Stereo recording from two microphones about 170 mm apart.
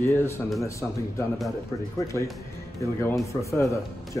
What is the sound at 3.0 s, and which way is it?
A man's voice, 15° left (ahead or behind).